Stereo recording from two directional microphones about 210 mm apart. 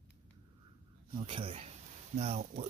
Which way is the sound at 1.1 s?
25° right (ahead or behind).